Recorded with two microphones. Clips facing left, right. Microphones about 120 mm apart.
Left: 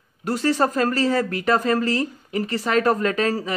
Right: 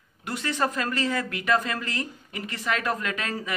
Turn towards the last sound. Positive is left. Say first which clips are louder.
# left 9 dB
turn(degrees=35)  # may be behind; listen again after turning